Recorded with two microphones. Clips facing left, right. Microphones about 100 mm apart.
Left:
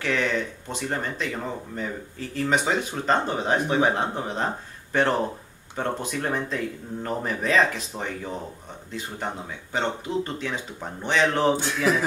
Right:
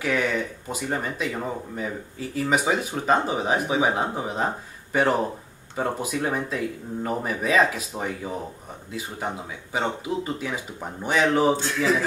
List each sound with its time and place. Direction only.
0.0 s speech: 10° right (ahead or behind)